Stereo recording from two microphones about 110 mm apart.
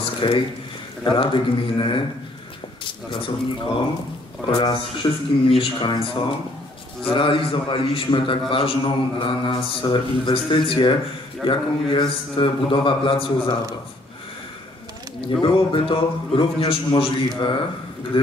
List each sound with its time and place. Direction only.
0.0 s squish: 50° left (ahead or behind)
1.0 s a man's voice: 50° left (ahead or behind)
2.8 s a sound: 50° left (ahead or behind)
4.5 s a man's voice: 35° left (ahead or behind)
15.4 s a man's voice: 55° left (ahead or behind)